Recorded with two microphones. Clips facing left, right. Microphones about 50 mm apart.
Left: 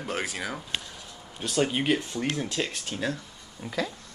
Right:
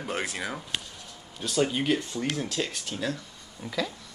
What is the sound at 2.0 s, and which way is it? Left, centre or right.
Speech, centre.